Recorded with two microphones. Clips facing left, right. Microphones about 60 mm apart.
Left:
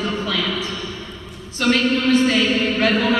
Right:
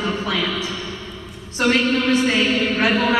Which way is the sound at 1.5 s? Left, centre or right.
Centre.